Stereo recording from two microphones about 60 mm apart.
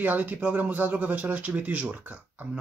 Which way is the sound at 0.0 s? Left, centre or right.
Right.